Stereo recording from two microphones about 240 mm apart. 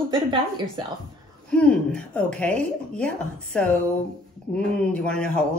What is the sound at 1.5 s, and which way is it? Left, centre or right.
A woman's voice, centre.